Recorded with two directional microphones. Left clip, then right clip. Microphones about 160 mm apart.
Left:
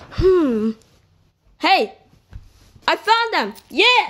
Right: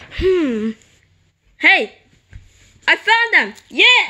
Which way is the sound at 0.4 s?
Centre (ahead or behind).